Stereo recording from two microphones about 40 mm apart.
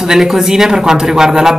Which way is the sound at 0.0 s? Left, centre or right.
Centre.